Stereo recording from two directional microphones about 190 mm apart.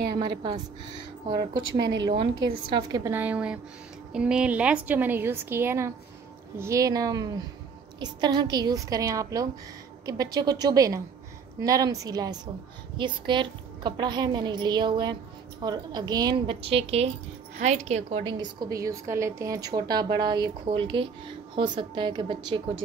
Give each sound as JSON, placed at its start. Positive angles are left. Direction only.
{"t": 1.3, "sound": "a woman's voice", "side_deg": -60}
{"t": 2.7, "sound": "a woman's voice", "side_deg": -20}
{"t": 3.1, "sound": "a woman's voice", "side_deg": -10}